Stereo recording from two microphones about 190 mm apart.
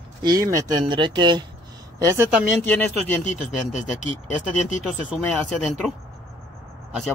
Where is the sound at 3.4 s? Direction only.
40° left (ahead or behind).